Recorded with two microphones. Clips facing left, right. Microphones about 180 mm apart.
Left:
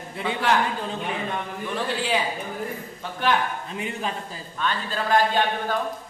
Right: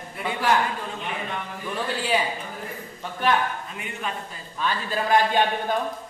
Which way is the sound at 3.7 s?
30° left (ahead or behind).